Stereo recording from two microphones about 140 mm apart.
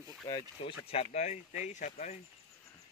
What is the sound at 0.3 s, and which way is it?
Speech, 40° left (ahead or behind).